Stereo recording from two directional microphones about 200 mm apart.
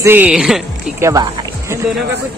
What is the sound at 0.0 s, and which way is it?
Speech, 10° right (ahead or behind).